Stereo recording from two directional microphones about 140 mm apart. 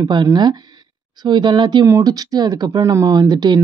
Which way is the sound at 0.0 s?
30° right (ahead or behind).